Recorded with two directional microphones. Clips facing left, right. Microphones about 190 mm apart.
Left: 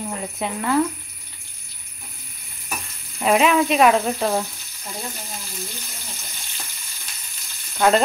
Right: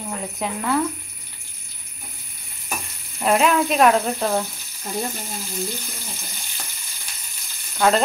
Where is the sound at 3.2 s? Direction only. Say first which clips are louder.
Left 1 dB; centre (ahead or behind).